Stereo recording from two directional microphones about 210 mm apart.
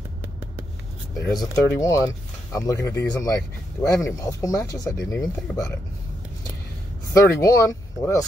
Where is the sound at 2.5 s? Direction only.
15° left (ahead or behind).